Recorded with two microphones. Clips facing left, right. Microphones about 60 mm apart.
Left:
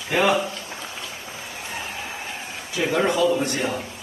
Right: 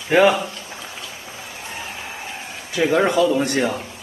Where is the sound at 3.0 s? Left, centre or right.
Right.